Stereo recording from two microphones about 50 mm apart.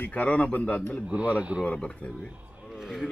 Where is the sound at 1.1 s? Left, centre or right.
Right.